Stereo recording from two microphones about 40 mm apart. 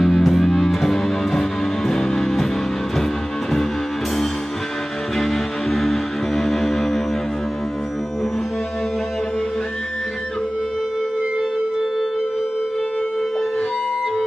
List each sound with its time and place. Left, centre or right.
0.0 s music: centre
5.2 s music: centre